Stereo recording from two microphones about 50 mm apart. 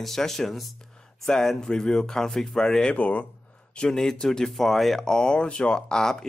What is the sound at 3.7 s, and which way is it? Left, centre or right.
Speech, centre.